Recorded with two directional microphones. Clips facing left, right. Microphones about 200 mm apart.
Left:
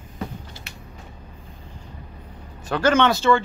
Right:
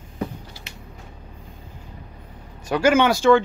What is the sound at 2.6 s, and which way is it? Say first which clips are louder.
Speech: right 1 dB; 10° right (ahead or behind).